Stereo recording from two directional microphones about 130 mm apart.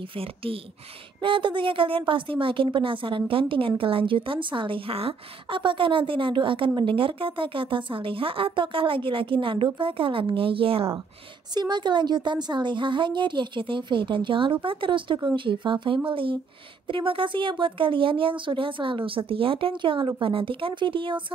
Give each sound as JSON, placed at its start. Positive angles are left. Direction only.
{"t": 0.1, "sound": "a woman's voice", "side_deg": -45}
{"t": 11.5, "sound": "a woman's voice", "side_deg": -35}